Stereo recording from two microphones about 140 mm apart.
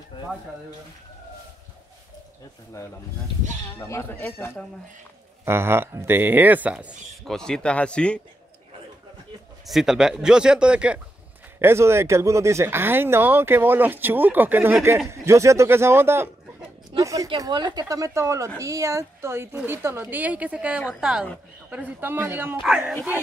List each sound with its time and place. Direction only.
3.7 s speech: 15° left (ahead or behind)
5.4 s speech: 15° right (ahead or behind)
7.2 s speech: 5° left (ahead or behind)
9.7 s a man's voice: centre (ahead or behind)
11.6 s a man's voice: 20° right (ahead or behind)